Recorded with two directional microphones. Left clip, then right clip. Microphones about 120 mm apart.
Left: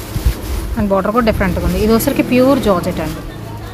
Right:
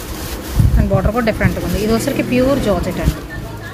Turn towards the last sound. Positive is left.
turn(degrees=45)  # may be behind; listen again after turning